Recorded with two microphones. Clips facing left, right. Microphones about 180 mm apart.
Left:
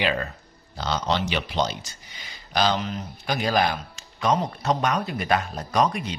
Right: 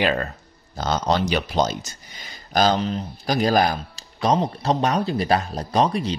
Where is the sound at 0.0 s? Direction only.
45° right (ahead or behind).